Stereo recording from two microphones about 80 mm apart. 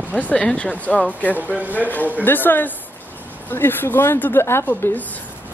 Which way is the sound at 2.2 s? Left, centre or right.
Left.